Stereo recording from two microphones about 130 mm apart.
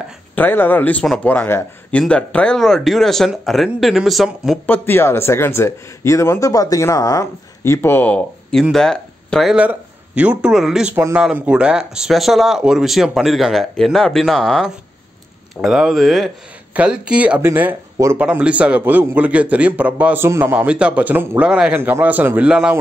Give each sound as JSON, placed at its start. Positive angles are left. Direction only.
{"t": 0.4, "sound": "speech", "side_deg": 15}
{"t": 4.6, "sound": "a man's voice", "side_deg": 15}
{"t": 9.7, "sound": "a sound", "side_deg": -10}
{"t": 10.4, "sound": "a man's voice", "side_deg": -5}
{"t": 20.5, "sound": "a man's voice", "side_deg": -10}